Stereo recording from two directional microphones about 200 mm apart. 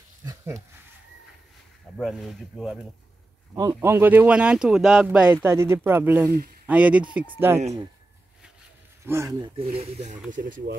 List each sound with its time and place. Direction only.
0.2 s goat: 15° right (ahead or behind)
2.0 s speech: centre (ahead or behind)
3.5 s speech: 15° right (ahead or behind)
9.0 s speech: 15° right (ahead or behind)
9.6 s speech: 30° right (ahead or behind)
10.3 s speech: 40° right (ahead or behind)